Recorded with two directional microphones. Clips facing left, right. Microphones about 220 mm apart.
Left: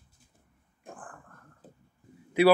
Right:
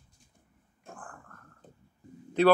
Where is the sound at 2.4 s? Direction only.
10° left (ahead or behind).